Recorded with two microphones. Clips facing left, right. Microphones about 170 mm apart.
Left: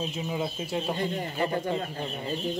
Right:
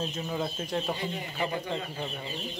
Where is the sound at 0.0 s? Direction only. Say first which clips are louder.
Left 1 dB; 10° left (ahead or behind).